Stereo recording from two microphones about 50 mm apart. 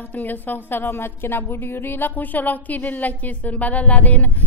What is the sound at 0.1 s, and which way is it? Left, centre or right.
Speech, left.